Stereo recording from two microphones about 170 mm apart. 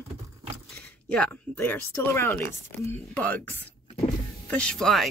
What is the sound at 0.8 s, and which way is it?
Speech, 5° left (ahead or behind).